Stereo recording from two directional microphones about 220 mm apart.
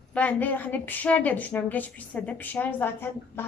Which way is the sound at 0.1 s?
5° left (ahead or behind).